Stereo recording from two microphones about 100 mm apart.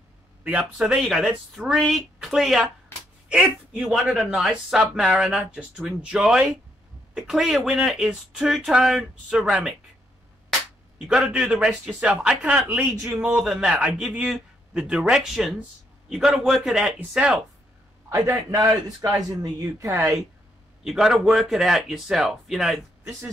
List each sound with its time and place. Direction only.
0.4 s a man's voice: 15° right (ahead or behind)
4.1 s a man's voice: centre (ahead or behind)
11.1 s a man's voice: 5° right (ahead or behind)
18.1 s a man's voice: 25° right (ahead or behind)
18.9 s speech: 40° right (ahead or behind)
19.4 s speech: 30° right (ahead or behind)
20.8 s speech: 5° right (ahead or behind)